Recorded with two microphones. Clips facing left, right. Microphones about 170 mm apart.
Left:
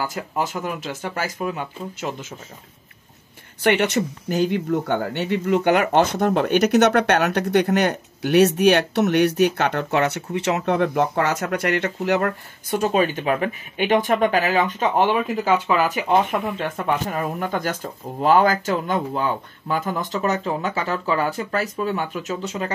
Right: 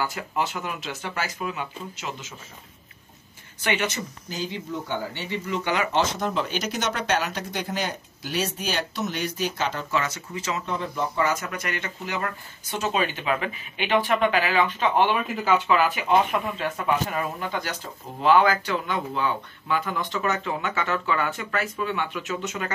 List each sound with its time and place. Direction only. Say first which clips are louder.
0.0 s speech: left 2 dB; 45° left (ahead or behind)
3.6 s speech: left 8 dB; 65° left (ahead or behind)
12.3 s speech: left 9 dB; 50° left (ahead or behind); by 22.7 s 35° left (ahead or behind)